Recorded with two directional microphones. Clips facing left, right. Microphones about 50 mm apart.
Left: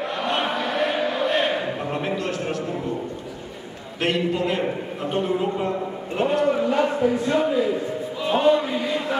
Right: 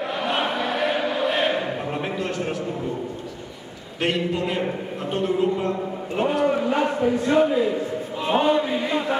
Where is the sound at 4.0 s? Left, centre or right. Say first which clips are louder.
Left 1 dB; centre.